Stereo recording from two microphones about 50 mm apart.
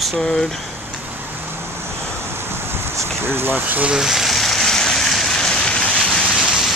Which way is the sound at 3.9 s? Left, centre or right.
Centre.